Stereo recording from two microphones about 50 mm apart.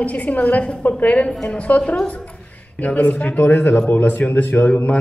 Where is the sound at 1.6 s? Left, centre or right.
Left.